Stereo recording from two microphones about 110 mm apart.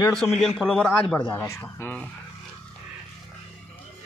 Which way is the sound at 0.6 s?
10° right (ahead or behind).